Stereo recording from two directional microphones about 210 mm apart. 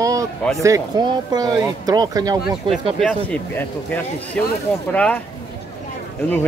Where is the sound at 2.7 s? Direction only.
5° left (ahead or behind).